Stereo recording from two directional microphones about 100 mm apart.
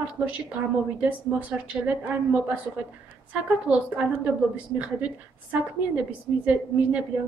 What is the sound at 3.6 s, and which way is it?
Speech, 15° right (ahead or behind).